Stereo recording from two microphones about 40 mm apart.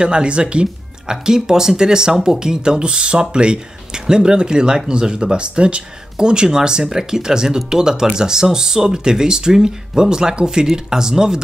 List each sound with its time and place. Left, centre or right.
0.0 s speech: right
1.2 s speech: centre